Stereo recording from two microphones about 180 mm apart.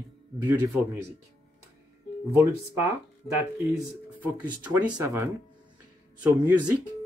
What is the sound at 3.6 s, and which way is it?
Speech, 5° right (ahead or behind).